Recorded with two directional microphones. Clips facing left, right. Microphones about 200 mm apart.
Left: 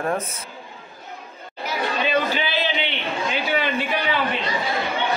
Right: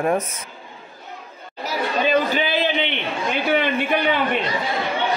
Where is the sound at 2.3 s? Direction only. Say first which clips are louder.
Right 3 dB; 50° right (ahead or behind).